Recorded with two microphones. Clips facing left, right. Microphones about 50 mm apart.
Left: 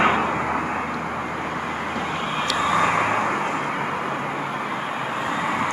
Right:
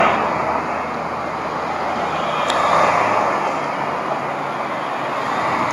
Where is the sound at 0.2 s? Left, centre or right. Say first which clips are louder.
Right 4 dB; right.